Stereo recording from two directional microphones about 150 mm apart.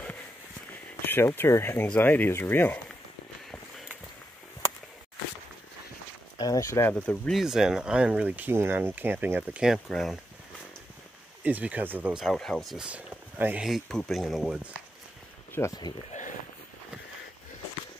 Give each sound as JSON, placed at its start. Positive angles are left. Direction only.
{"t": 1.0, "sound": "speech", "side_deg": 15}
{"t": 6.3, "sound": "speech", "side_deg": 25}
{"t": 6.9, "sound": "speech", "side_deg": 5}
{"t": 11.4, "sound": "speech", "side_deg": -10}
{"t": 13.7, "sound": "speech", "side_deg": 0}
{"t": 15.5, "sound": "speech", "side_deg": 20}
{"t": 16.1, "sound": "a sound", "side_deg": 55}